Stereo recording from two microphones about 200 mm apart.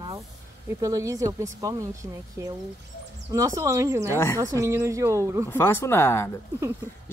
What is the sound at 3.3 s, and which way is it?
Speech, 15° right (ahead or behind).